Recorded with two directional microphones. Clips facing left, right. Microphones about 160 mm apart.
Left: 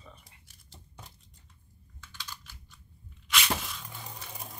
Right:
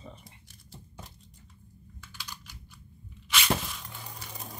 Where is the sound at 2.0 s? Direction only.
10° right (ahead or behind).